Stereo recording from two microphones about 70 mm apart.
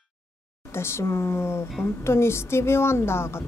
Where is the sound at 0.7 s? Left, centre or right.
Left.